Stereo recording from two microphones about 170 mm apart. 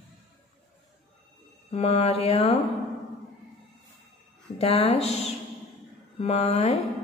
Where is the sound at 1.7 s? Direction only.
35° left (ahead or behind).